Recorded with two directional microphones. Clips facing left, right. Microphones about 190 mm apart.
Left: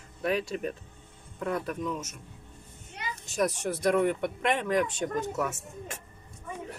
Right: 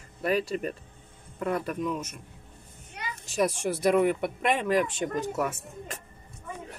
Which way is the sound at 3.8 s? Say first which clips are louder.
Right 2 dB; 10° right (ahead or behind).